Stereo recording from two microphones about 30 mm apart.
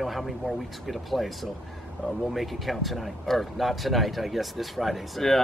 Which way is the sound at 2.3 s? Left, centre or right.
Centre.